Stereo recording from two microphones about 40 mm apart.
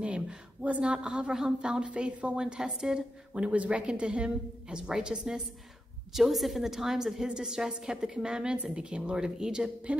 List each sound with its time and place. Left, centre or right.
0.0 s a woman's voice: right
3.4 s a woman's voice: right
6.1 s a woman's voice: centre
9.9 s a woman's voice: right